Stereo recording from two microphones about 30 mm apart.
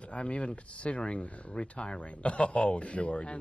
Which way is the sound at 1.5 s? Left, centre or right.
Left.